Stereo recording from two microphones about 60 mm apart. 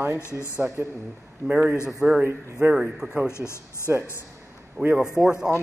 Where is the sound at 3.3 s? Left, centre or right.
Left.